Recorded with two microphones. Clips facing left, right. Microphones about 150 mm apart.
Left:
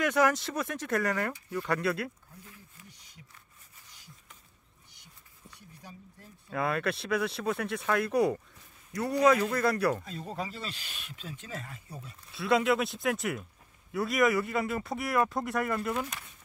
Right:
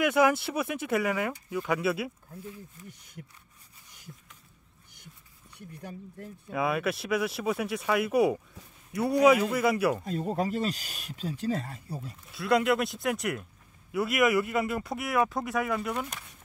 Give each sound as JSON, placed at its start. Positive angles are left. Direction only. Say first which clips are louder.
{"t": 0.0, "sound": "speech", "louder": "right 3 dB", "side_deg": -10}
{"t": 2.9, "sound": "speech", "louder": "right 9 dB", "side_deg": -55}
{"t": 5.6, "sound": "speech", "louder": "right 9 dB", "side_deg": -55}
{"t": 6.5, "sound": "speech", "louder": "right 2 dB", "side_deg": -5}
{"t": 10.3, "sound": "speech", "louder": "right 8 dB", "side_deg": -45}
{"t": 12.3, "sound": "speech", "louder": "right 1 dB", "side_deg": 0}